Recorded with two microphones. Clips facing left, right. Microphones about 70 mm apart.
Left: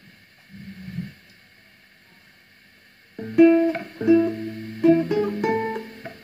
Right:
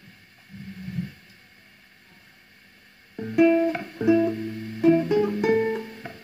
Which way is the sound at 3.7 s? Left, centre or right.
Left.